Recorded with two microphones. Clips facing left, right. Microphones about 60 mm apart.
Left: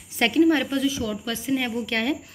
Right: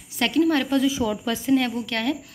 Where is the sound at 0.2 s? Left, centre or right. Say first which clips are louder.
Left 1 dB; left.